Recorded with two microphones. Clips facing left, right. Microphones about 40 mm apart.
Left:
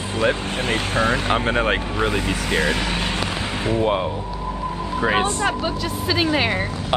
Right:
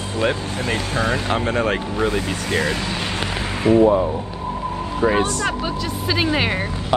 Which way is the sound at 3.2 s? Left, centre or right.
Right.